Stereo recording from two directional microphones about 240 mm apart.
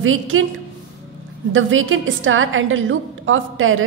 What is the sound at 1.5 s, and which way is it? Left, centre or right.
A woman's voice, right.